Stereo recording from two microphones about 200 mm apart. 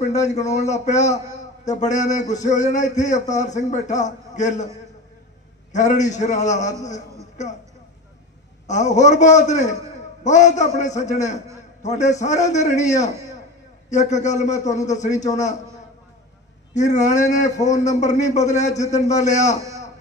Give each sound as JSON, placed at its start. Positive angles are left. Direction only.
{"t": 0.0, "sound": "a man's voice", "side_deg": 35}
{"t": 5.7, "sound": "a man's voice", "side_deg": 35}
{"t": 8.6, "sound": "a man's voice", "side_deg": 35}
{"t": 16.7, "sound": "a man's voice", "side_deg": 35}